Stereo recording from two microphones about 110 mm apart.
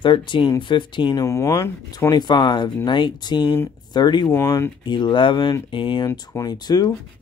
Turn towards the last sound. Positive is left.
turn(degrees=40)  # may be behind; listen again after turning